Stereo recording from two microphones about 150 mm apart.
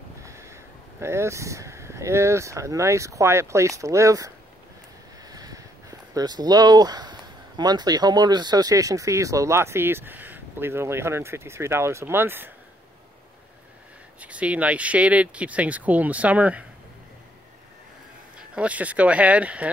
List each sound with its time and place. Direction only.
0.2 s speech: 20° right (ahead or behind)
5.3 s speech: 25° right (ahead or behind)
14.2 s speech: 10° right (ahead or behind)
18.5 s speech: 10° right (ahead or behind)